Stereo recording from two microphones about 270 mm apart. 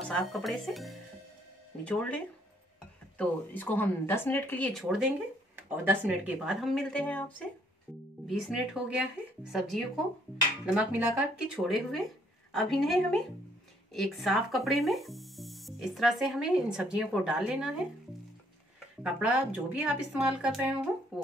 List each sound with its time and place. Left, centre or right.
0.1 s speech: centre
19.0 s speech: centre